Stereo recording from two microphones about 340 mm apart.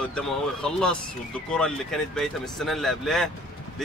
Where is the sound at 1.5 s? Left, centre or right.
Centre.